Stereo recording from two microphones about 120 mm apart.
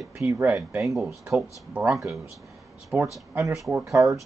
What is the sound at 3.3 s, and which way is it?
Speech, 25° right (ahead or behind).